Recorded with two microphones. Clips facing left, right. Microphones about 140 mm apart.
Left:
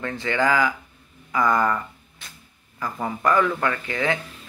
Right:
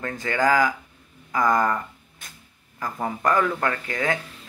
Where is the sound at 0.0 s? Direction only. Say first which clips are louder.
Even; 45° right (ahead or behind).